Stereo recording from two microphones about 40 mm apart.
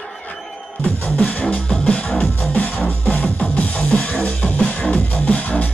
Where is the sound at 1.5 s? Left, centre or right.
Left.